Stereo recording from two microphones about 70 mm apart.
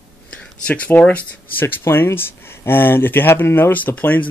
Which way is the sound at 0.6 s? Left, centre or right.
Left.